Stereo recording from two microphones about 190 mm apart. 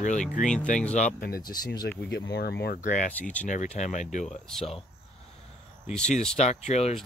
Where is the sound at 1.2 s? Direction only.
50° left (ahead or behind).